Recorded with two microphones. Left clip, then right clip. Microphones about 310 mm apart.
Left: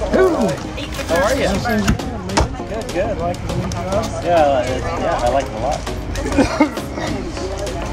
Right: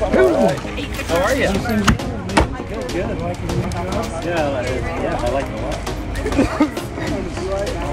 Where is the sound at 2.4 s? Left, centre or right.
Right.